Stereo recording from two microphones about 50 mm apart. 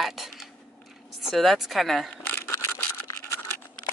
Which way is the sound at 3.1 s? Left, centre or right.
Left.